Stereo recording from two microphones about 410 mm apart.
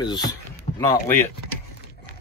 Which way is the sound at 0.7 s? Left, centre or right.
Centre.